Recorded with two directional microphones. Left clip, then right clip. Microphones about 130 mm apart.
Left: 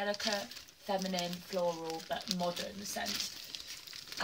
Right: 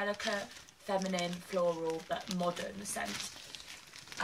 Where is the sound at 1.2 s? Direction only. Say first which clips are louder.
Right 2 dB; 50° right (ahead or behind).